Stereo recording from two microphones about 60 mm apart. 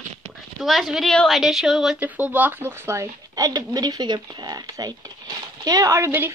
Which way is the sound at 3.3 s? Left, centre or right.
Right.